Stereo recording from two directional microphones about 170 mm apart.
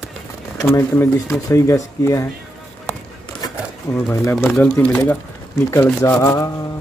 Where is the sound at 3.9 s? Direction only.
15° left (ahead or behind).